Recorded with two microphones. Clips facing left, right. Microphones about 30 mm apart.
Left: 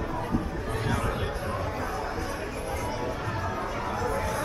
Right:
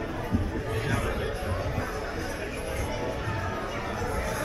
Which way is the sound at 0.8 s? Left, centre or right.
Centre.